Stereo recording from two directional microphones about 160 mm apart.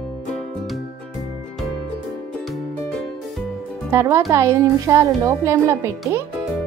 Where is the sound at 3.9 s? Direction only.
15° right (ahead or behind).